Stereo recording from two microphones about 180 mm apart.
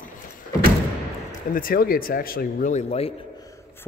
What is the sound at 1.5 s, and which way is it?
Speech, 55° left (ahead or behind).